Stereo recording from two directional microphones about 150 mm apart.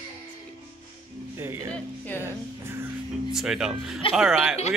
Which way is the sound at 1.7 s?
10° left (ahead or behind).